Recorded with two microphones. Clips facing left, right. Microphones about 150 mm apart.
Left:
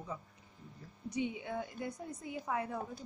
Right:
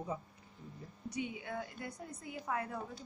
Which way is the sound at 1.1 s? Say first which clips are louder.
Left 3 dB; 25° left (ahead or behind).